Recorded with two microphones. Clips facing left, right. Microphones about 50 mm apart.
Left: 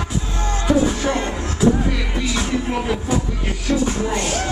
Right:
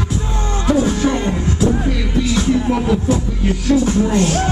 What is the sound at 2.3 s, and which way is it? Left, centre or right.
Music, centre.